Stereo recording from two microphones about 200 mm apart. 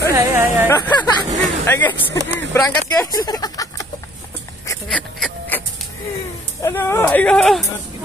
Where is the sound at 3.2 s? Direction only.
20° left (ahead or behind).